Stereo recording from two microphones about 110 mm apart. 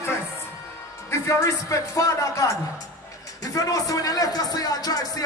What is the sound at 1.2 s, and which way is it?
Music, 30° left (ahead or behind).